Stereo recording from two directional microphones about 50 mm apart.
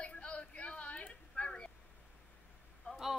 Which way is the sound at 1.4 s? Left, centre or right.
Centre.